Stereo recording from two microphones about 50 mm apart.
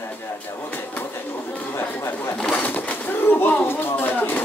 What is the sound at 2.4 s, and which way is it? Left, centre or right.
Bird, left.